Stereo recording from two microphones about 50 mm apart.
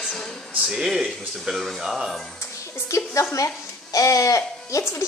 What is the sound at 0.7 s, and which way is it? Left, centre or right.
Speech, centre.